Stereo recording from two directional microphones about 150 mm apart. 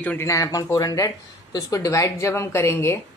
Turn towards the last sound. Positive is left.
turn(degrees=15)  # may be behind; listen again after turning